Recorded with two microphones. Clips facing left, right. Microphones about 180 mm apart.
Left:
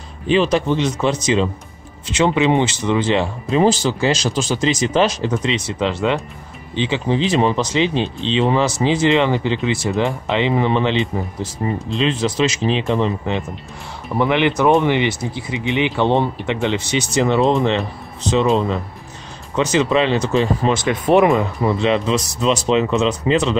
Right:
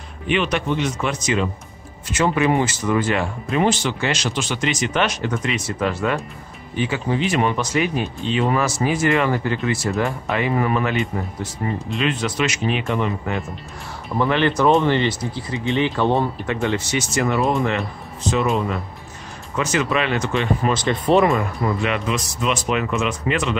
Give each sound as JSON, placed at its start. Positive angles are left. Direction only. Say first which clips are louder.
{"t": 0.3, "sound": "speech", "louder": "left 5 dB", "side_deg": 30}
{"t": 14.1, "sound": "speech", "louder": "left 2 dB", "side_deg": 15}
{"t": 20.8, "sound": "speech", "louder": "left 3 dB", "side_deg": 10}